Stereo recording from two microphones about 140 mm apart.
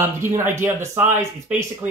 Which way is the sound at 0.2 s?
20° right (ahead or behind).